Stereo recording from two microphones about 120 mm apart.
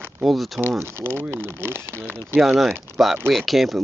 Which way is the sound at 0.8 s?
20° right (ahead or behind).